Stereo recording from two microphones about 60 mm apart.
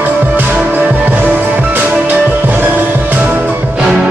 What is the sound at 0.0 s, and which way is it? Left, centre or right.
Music, right.